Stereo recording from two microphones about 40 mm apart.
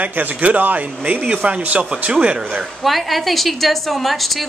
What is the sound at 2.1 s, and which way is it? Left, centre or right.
Speech, right.